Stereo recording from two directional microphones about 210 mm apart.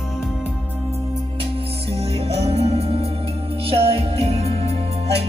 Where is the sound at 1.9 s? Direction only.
30° right (ahead or behind).